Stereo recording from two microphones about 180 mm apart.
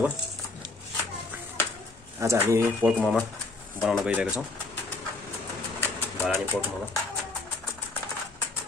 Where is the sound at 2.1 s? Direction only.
15° right (ahead or behind).